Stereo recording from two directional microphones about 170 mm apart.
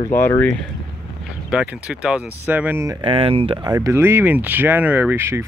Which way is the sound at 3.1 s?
35° right (ahead or behind).